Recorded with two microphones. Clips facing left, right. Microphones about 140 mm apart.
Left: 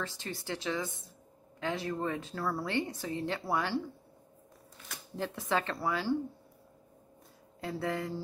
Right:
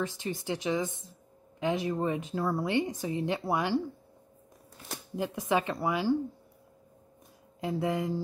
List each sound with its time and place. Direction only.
0.0 s speech: 15° right (ahead or behind)
5.1 s speech: 15° right (ahead or behind)
7.6 s speech: 15° right (ahead or behind)